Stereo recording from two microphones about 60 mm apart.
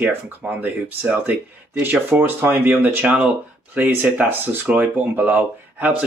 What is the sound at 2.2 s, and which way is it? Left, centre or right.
Speech, right.